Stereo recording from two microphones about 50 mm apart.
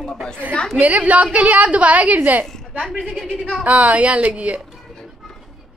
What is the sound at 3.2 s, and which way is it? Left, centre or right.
Speech, centre.